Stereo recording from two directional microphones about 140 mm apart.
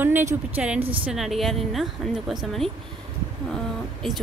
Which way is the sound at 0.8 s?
40° right (ahead or behind).